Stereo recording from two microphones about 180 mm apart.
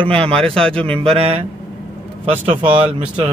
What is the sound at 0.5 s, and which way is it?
Speech, 5° left (ahead or behind).